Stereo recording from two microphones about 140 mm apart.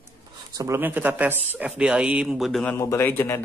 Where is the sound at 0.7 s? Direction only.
15° right (ahead or behind).